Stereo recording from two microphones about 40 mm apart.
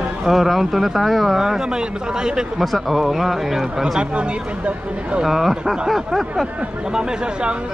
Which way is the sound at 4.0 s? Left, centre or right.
Right.